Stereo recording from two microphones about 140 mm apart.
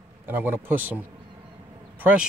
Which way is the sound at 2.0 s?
10° right (ahead or behind).